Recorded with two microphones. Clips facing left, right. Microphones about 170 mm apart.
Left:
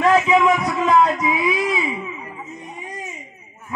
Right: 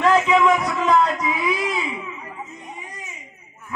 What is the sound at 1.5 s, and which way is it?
Baby cry, centre (ahead or behind).